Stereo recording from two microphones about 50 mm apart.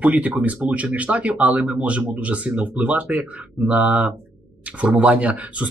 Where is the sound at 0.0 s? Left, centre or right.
Right.